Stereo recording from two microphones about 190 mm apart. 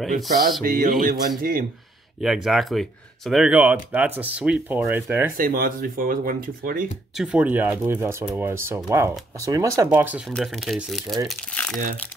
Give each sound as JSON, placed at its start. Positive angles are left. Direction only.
{"t": 0.7, "sound": "speech", "side_deg": -50}
{"t": 2.2, "sound": "speech", "side_deg": 0}
{"t": 5.4, "sound": "speech", "side_deg": -50}
{"t": 7.2, "sound": "speech", "side_deg": -5}